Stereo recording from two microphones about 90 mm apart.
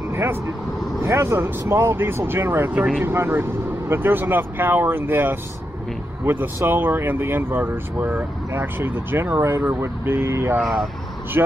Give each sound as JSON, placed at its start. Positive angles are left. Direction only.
{"t": 0.1, "sound": "vehicle", "side_deg": -30}
{"t": 1.0, "sound": "speech", "side_deg": -30}
{"t": 10.6, "sound": "speech", "side_deg": 0}
{"t": 11.4, "sound": "speech", "side_deg": -25}